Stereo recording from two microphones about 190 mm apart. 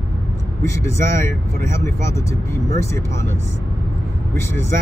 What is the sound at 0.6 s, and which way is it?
Speech, 15° left (ahead or behind).